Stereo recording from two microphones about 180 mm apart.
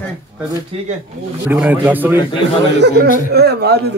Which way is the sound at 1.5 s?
10° right (ahead or behind).